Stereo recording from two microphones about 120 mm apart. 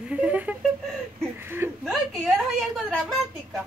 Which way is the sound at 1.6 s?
20° right (ahead or behind).